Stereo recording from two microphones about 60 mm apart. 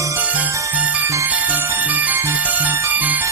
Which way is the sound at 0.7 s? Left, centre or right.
Right.